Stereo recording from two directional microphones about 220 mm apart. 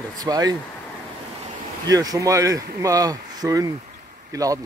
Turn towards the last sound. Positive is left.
turn(degrees=-15)  # may be behind; listen again after turning